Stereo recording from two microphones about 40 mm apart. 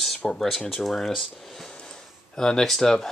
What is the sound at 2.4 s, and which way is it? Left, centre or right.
Speech, centre.